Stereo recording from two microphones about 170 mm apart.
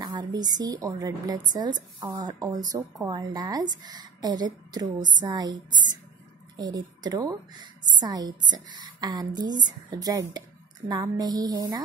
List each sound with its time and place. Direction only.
0.0 s a woman's voice: 25° right (ahead or behind)